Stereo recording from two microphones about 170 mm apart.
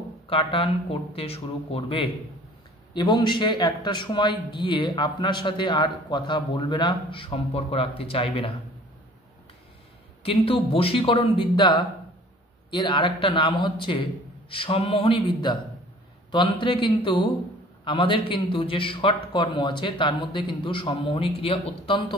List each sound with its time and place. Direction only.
0.3 s a man's voice: 35° left (ahead or behind)
10.2 s a man's voice: 35° left (ahead or behind)
16.3 s a man's voice: 30° left (ahead or behind)